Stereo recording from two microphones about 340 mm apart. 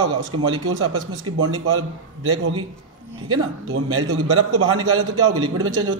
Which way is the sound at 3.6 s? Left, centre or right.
Right.